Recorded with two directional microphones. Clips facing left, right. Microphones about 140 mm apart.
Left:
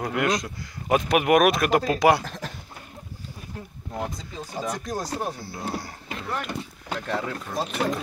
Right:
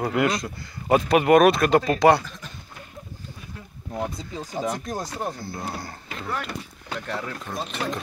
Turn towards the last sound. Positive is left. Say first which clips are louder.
# left 3 dB
turn(degrees=5)  # may be behind; listen again after turning